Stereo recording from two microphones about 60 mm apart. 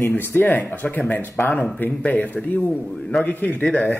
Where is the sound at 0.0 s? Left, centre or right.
Left.